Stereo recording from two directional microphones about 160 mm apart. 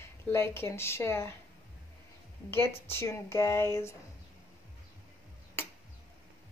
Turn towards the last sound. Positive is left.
turn(degrees=15)  # may be behind; listen again after turning